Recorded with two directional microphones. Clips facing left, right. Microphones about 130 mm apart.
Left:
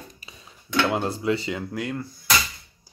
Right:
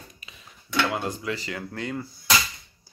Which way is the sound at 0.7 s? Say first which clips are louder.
Left 3 dB; 25° left (ahead or behind).